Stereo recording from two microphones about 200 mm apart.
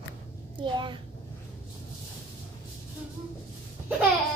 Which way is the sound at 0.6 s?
25° right (ahead or behind).